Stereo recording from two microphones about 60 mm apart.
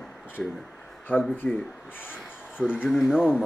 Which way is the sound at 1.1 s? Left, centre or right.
Left.